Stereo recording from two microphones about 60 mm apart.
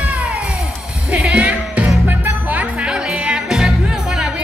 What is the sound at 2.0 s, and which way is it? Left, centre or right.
Music, right.